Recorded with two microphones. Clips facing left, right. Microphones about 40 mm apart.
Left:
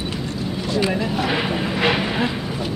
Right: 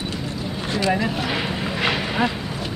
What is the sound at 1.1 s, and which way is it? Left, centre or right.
Speech, centre.